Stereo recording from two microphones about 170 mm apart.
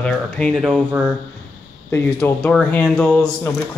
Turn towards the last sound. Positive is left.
turn(degrees=5)  # may be behind; listen again after turning